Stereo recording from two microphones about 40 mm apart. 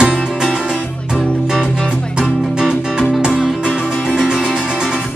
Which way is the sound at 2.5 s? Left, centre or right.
Centre.